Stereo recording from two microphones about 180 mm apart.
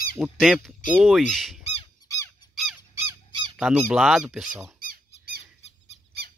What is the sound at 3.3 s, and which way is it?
Honk, 25° right (ahead or behind).